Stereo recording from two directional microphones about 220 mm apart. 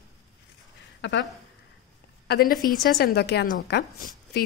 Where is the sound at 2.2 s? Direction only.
40° left (ahead or behind).